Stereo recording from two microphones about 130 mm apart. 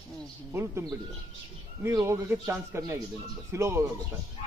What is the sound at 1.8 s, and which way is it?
A man's voice, 20° right (ahead or behind).